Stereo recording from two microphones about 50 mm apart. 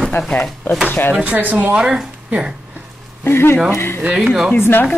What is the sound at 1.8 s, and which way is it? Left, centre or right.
Speech, centre.